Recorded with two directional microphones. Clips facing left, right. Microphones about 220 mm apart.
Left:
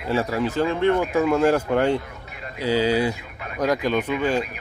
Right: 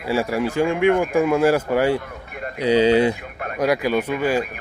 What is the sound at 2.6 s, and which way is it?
Speech, 20° right (ahead or behind).